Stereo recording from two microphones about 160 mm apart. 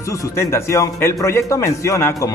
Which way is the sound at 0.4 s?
15° left (ahead or behind).